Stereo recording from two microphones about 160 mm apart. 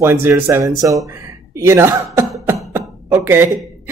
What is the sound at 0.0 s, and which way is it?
Speech, 15° right (ahead or behind).